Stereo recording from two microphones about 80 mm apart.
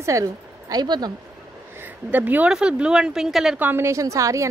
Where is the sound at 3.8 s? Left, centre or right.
Right.